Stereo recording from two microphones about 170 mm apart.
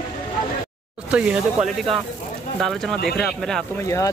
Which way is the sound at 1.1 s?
5° right (ahead or behind).